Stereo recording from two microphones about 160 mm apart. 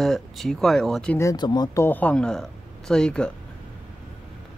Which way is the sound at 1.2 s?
25° left (ahead or behind).